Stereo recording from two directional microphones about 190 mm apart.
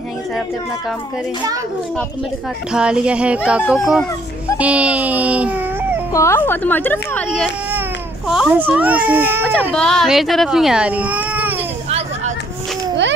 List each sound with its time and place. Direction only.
2.7 s speech: 5° right (ahead or behind)
6.1 s a woman's voice: 15° left (ahead or behind)
8.3 s speech: 5° right (ahead or behind)
9.7 s speech: 5° left (ahead or behind)